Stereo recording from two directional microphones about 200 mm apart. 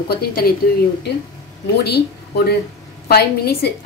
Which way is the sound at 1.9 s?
55° left (ahead or behind).